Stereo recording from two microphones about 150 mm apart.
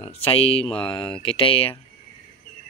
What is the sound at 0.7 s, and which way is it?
Speech, 5° left (ahead or behind).